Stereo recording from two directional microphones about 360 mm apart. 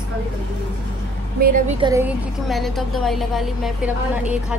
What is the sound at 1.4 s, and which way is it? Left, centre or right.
Speech, right.